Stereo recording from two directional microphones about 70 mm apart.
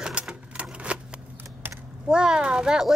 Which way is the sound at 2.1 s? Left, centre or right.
Centre.